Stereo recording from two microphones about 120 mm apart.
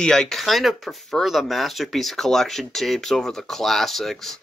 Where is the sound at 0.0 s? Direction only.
5° left (ahead or behind).